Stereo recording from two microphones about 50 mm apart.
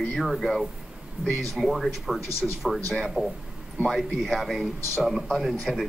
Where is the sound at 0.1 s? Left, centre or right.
Centre.